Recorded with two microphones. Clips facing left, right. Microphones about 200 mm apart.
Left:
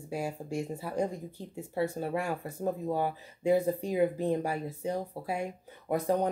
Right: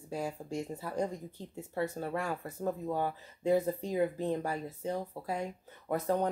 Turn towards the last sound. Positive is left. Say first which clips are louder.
# left 2 dB
turn(degrees=15)  # may be behind; listen again after turning